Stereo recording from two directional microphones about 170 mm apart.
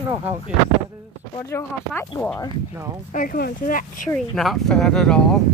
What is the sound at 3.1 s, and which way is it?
Speech, 55° left (ahead or behind).